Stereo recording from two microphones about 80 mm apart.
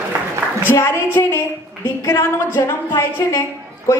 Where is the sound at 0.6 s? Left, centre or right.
Left.